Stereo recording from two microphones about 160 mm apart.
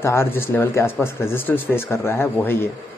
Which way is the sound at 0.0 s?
15° left (ahead or behind).